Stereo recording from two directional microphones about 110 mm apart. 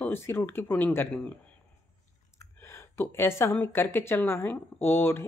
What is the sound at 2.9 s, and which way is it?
A woman's voice, 20° left (ahead or behind).